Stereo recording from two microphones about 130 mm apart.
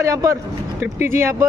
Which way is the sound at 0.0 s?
25° right (ahead or behind).